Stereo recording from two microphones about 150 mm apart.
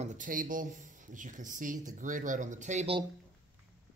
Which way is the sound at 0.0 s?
55° right (ahead or behind).